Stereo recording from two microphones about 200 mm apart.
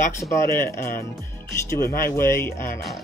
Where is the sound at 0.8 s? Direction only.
45° left (ahead or behind).